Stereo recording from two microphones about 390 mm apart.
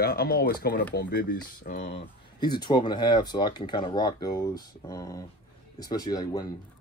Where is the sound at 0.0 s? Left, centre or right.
Left.